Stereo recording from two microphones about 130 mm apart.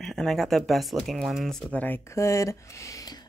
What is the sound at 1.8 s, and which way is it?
Speech, 20° left (ahead or behind).